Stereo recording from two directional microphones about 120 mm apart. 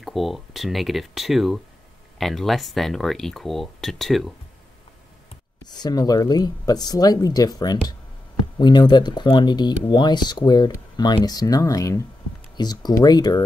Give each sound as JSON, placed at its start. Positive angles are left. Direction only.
{"t": 0.0, "sound": "speech", "side_deg": 0}
{"t": 5.7, "sound": "speech", "side_deg": 35}